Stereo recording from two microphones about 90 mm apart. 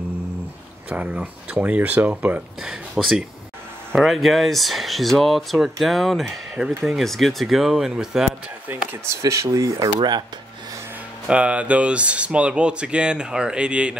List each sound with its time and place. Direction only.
0.8 s speech: 15° right (ahead or behind)
8.7 s speech: 20° right (ahead or behind)
9.2 s speech: 35° right (ahead or behind)
9.8 s speech: 55° right (ahead or behind)
11.2 s speech: 15° right (ahead or behind)